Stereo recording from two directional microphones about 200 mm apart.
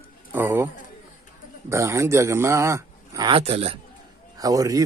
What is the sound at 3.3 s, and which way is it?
Speech, 30° right (ahead or behind).